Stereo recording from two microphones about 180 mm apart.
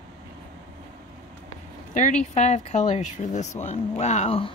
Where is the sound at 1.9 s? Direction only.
40° left (ahead or behind).